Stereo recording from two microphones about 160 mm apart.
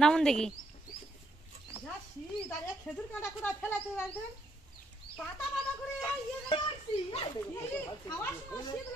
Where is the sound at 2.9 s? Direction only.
10° left (ahead or behind).